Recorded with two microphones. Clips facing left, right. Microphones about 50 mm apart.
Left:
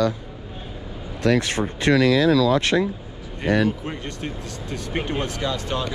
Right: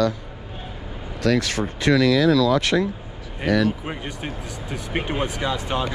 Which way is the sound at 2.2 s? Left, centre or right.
Left.